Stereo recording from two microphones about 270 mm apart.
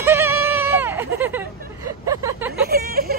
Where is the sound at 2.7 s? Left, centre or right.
Right.